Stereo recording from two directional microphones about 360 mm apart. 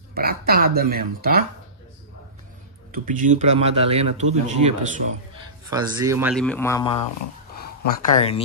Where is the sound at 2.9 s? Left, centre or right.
Right; by 7.1 s centre.